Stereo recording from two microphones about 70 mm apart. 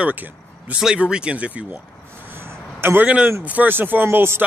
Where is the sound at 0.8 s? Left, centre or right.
Centre.